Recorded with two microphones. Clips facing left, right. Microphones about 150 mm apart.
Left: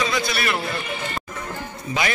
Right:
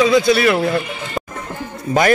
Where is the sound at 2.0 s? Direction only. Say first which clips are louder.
Right 10 dB; 50° right (ahead or behind).